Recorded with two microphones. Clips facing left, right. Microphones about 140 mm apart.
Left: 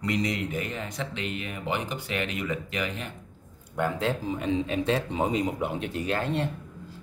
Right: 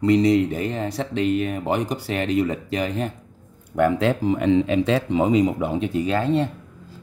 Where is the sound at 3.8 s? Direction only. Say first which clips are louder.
Right 8 dB; 70° right (ahead or behind); by 5.4 s 90° right.